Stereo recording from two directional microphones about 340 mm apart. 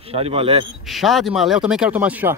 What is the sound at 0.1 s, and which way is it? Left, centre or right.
Speech, centre.